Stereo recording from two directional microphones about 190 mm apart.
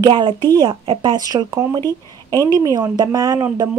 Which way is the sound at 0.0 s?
25° right (ahead or behind).